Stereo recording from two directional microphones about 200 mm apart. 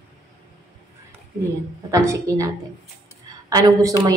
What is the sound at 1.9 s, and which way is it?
A woman's voice, 15° right (ahead or behind).